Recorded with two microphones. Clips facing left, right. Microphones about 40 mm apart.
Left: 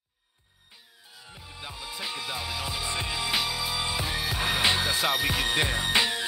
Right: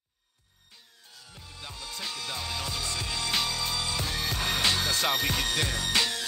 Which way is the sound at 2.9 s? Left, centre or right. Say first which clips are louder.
Left 3 dB; centre.